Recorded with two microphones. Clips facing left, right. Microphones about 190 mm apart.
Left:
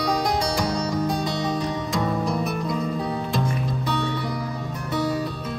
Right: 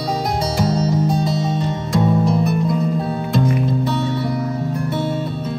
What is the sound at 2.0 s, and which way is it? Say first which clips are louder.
Music: right 10 dB; centre (ahead or behind).